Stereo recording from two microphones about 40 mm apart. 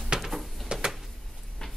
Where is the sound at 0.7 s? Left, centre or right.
Centre.